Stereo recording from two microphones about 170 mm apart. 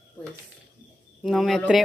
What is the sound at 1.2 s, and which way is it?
Speech, centre (ahead or behind).